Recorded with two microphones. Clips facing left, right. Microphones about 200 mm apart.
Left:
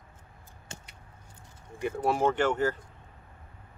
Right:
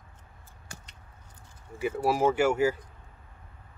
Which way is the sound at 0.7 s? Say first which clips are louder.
Left 2 dB; 25° left (ahead or behind).